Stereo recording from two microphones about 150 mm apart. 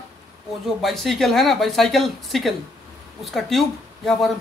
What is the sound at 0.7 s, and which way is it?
A man's voice, centre (ahead or behind).